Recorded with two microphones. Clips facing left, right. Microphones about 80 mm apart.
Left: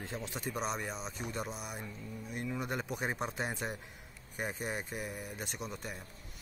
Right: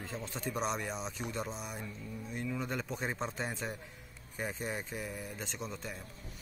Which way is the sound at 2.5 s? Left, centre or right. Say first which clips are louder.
Left 1 dB; centre.